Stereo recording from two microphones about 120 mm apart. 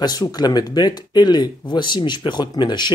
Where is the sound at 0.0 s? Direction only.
35° left (ahead or behind).